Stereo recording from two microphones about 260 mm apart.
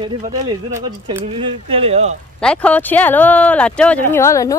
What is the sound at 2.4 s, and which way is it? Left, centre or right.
Speech, centre.